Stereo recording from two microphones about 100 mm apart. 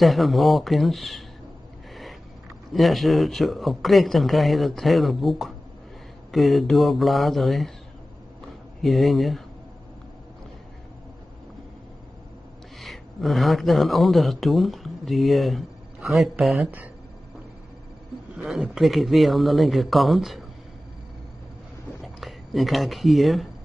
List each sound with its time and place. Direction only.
0.0 s a man's voice: centre (ahead or behind)
2.7 s a man's voice: centre (ahead or behind)
8.8 s a man's voice: centre (ahead or behind)
12.8 s speech: centre (ahead or behind)
18.3 s a man's voice: centre (ahead or behind)
22.0 s speech: centre (ahead or behind)